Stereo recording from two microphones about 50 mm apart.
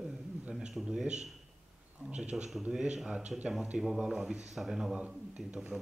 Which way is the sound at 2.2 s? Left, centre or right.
Centre.